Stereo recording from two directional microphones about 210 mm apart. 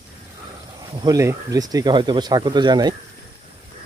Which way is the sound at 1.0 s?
15° right (ahead or behind).